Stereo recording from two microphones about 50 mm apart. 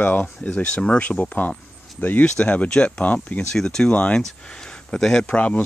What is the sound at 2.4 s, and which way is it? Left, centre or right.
Speech, left.